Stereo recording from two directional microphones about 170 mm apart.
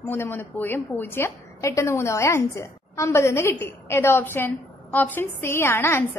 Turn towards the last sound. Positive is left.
turn(degrees=15)  # may be behind; listen again after turning